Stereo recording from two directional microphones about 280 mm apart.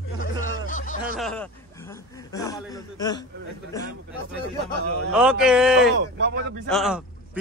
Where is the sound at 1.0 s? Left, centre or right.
Centre.